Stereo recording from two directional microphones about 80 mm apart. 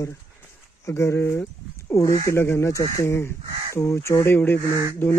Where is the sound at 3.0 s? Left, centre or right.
Left.